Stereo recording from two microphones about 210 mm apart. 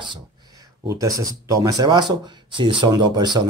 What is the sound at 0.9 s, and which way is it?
Speech, 15° right (ahead or behind).